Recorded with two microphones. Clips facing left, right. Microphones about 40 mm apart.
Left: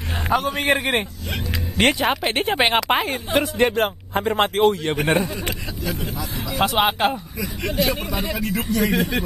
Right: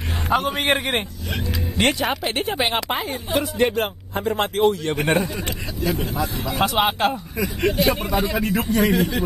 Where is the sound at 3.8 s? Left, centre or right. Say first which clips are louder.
Left 3 dB; left.